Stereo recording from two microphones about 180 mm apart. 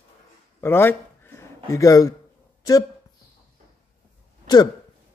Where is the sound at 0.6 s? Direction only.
10° left (ahead or behind).